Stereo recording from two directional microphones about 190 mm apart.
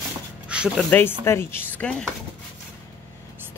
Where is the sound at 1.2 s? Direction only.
15° left (ahead or behind).